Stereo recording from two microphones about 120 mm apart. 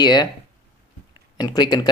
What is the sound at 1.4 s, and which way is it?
Speech, 35° left (ahead or behind).